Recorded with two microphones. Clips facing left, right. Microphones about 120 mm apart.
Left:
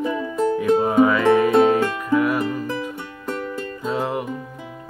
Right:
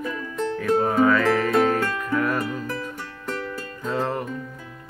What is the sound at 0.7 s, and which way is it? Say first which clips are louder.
Music: left 2 dB; 15° left (ahead or behind).